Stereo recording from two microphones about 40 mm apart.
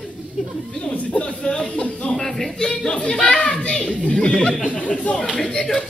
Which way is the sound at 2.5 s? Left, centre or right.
Centre.